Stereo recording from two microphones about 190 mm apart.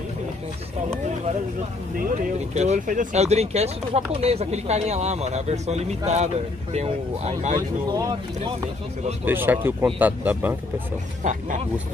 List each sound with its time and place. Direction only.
2.0 s speech: 40° right (ahead or behind)
7.9 s speech: 20° right (ahead or behind)
9.2 s speech: 10° right (ahead or behind)